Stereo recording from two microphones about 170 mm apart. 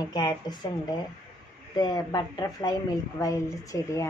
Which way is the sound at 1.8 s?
25° left (ahead or behind).